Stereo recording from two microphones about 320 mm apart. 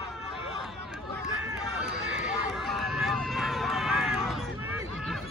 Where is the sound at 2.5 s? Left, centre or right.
Centre.